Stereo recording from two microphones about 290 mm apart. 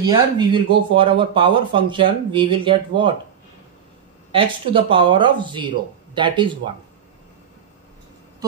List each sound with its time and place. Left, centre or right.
0.1 s speech: centre
4.3 s speech: centre